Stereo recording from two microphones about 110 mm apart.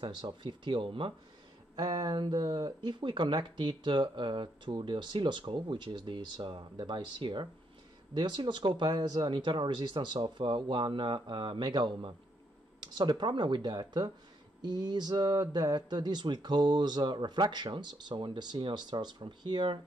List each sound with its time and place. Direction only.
0.0 s speech: 45° right (ahead or behind)
1.8 s speech: 40° right (ahead or behind)